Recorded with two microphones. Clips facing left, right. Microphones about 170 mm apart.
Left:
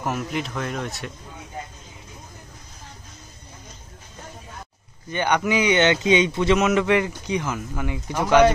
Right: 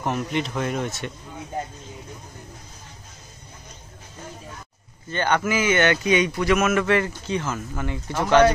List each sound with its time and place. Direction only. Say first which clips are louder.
0.0 s speech: right 1 dB; centre (ahead or behind)
5.1 s speech: left 1 dB; 15° left (ahead or behind)